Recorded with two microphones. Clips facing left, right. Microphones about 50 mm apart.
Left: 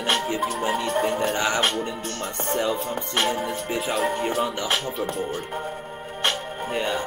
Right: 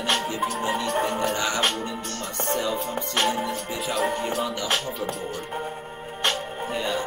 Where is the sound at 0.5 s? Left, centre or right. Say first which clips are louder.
Even; centre.